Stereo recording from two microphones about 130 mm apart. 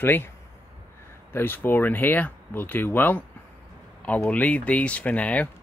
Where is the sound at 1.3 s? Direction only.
15° left (ahead or behind).